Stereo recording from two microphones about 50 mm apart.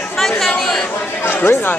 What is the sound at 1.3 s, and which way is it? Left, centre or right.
Chatter, left.